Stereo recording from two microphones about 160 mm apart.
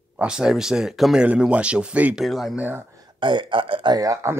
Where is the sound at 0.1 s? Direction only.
5° right (ahead or behind).